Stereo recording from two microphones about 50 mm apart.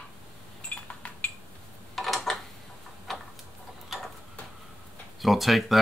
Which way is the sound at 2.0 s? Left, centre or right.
Centre.